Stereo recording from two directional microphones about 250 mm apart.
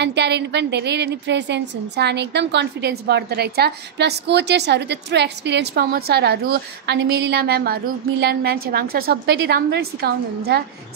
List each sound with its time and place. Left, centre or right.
0.0 s a woman's voice: right